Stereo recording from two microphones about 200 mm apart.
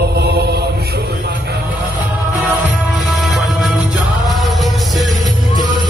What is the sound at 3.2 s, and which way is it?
Music, centre (ahead or behind).